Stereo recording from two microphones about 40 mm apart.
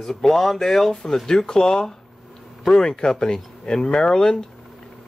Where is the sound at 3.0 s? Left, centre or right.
Centre.